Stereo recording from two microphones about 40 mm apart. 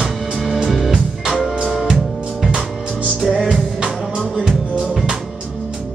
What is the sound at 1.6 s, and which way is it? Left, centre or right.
Music, centre.